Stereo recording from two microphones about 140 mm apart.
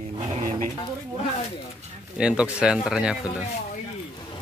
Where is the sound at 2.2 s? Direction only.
5° right (ahead or behind).